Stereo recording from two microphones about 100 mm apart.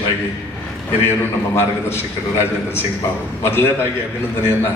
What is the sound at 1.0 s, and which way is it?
A man's voice, 25° left (ahead or behind).